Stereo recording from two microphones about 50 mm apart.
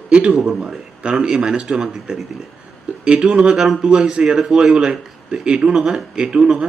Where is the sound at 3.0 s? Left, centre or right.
Centre.